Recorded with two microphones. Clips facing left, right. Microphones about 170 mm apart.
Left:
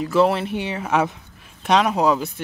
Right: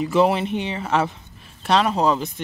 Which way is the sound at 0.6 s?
10° left (ahead or behind).